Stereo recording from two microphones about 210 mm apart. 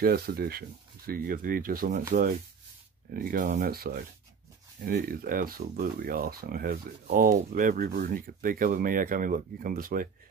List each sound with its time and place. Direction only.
0.0 s speech: 45° right (ahead or behind)